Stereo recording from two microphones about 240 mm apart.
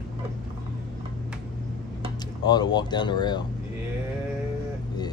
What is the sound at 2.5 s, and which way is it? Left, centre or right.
Speech, centre.